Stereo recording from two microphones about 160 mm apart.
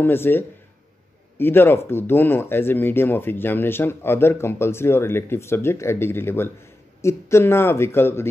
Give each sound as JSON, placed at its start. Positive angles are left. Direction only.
{"t": 0.0, "sound": "speech", "side_deg": 15}